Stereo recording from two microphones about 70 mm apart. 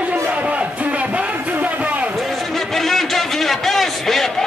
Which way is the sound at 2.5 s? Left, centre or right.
Centre.